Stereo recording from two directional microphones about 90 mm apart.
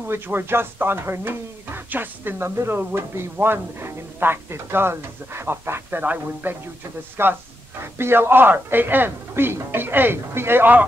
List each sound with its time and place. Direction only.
0.0 s speech: 25° right (ahead or behind)